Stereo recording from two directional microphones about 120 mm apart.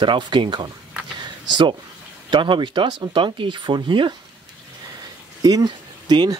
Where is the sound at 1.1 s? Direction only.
40° right (ahead or behind).